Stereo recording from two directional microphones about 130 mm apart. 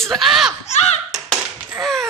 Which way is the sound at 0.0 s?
Centre (ahead or behind).